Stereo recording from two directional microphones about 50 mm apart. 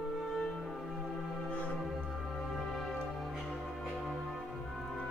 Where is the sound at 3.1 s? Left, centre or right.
Centre.